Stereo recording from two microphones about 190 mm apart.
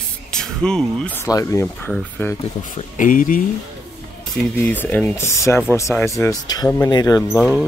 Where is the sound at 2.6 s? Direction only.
45° left (ahead or behind).